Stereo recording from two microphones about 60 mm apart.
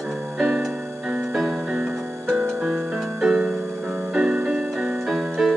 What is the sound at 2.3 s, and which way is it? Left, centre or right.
Music, centre.